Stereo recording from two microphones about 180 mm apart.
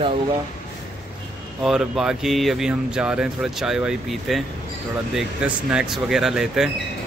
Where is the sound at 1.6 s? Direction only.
5° right (ahead or behind).